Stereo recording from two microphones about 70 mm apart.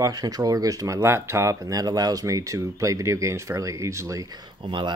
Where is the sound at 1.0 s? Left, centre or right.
Right.